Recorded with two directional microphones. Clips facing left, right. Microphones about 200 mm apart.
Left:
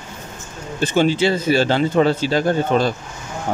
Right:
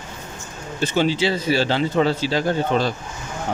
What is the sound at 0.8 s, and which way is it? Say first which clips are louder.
Speech: left 3 dB; 50° left (ahead or behind).